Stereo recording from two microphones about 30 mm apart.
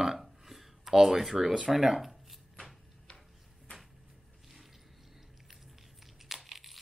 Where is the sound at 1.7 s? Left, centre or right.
Centre.